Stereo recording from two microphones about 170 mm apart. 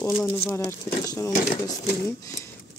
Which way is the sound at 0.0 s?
15° left (ahead or behind).